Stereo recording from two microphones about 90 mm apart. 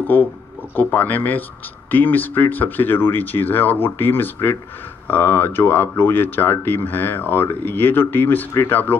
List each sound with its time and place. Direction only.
0.1 s speech: 20° left (ahead or behind)